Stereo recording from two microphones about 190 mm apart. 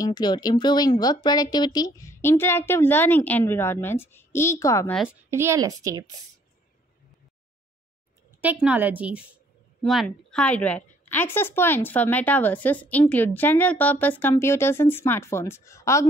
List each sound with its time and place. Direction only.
0.0 s speech: 20° left (ahead or behind)
5.3 s a woman's voice: 15° right (ahead or behind)
8.4 s a woman's voice: 5° right (ahead or behind)
9.8 s speech: centre (ahead or behind)